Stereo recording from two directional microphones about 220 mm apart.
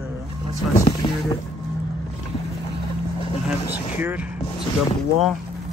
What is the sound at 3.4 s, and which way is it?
Speech, 5° right (ahead or behind).